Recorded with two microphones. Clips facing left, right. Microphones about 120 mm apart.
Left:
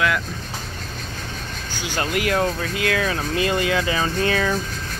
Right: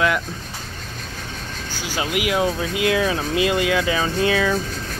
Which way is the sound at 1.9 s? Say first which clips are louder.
Even; 5° right (ahead or behind).